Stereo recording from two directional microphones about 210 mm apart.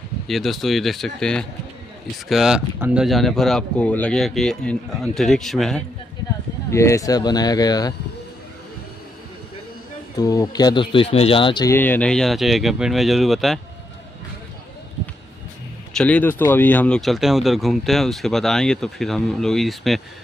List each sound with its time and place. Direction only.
0.3 s speech: centre (ahead or behind)
6.7 s speech: 15° left (ahead or behind)
10.1 s speech: 15° left (ahead or behind); by 13.6 s centre (ahead or behind)
15.9 s speech: 5° left (ahead or behind)